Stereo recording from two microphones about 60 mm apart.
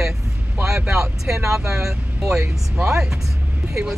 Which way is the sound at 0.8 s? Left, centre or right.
Right.